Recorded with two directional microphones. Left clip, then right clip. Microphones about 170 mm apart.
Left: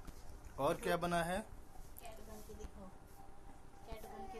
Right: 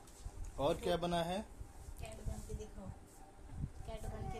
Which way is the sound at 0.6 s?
Centre (ahead or behind).